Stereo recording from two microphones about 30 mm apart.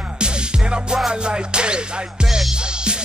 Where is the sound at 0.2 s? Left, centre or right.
Right.